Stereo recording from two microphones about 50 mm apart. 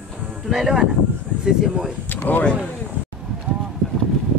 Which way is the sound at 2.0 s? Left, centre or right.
Left.